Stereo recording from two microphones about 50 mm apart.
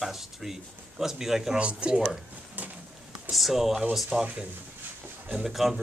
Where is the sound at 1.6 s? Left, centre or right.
Right.